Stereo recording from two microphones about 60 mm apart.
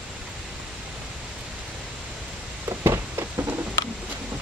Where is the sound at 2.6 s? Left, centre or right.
Right.